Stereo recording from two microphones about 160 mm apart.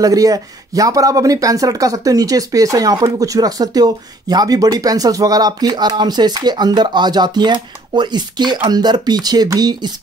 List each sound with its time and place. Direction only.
0.0 s speech: 20° right (ahead or behind)